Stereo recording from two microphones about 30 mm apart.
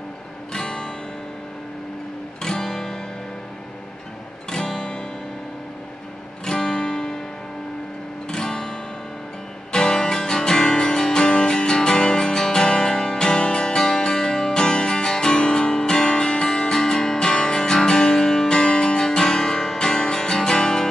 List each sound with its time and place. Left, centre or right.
0.5 s guitar: left
2.4 s guitar: centre
4.5 s guitar: centre
6.4 s guitar: centre
8.3 s guitar: centre
9.7 s music: left